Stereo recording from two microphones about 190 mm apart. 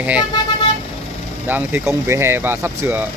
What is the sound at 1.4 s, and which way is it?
Speech, 10° right (ahead or behind).